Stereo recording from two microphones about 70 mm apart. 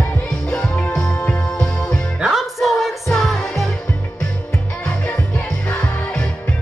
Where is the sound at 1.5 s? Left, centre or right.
Centre.